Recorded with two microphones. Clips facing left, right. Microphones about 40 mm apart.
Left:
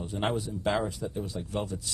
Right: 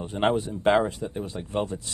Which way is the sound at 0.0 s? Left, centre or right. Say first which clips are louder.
Right 6 dB; right.